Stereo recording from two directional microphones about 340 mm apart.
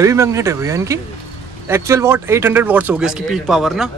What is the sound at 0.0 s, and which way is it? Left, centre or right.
Speech, centre.